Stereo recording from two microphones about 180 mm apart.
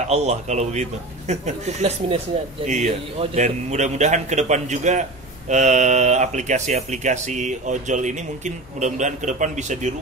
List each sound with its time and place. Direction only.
0.1 s speech: 40° right (ahead or behind)